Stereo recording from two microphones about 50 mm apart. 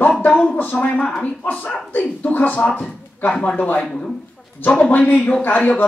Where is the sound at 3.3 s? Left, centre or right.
Centre.